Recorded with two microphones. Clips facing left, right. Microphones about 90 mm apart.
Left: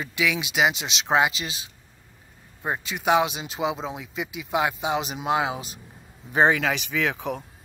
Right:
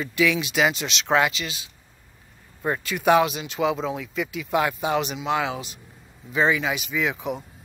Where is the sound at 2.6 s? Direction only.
20° left (ahead or behind).